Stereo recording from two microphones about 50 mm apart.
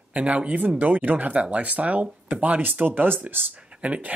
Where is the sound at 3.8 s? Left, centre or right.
Right.